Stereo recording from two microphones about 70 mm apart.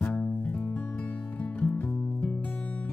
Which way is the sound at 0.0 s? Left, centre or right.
Centre.